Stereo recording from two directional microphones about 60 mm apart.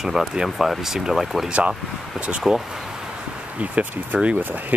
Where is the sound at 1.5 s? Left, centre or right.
Right.